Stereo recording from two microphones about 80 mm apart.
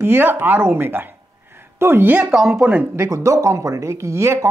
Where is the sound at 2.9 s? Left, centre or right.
Right.